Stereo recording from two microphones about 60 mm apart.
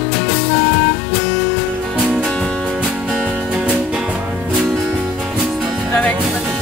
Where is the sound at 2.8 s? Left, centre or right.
Centre.